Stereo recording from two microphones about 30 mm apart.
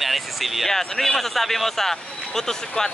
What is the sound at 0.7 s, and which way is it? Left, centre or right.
Speech, centre.